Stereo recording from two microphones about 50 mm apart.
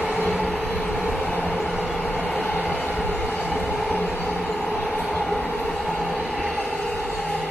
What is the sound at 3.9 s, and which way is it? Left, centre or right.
Vehicle, left.